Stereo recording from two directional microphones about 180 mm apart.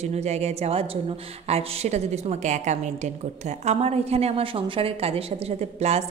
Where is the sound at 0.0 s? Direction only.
35° right (ahead or behind).